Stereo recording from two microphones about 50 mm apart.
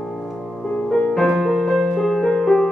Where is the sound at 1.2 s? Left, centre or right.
Centre.